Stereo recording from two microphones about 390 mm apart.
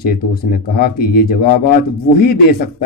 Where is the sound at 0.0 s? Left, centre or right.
Left.